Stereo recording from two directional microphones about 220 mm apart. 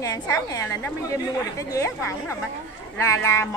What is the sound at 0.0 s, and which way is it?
Speech, 15° left (ahead or behind).